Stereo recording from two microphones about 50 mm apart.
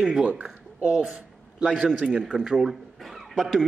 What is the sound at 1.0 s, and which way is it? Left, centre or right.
A man's voice, centre.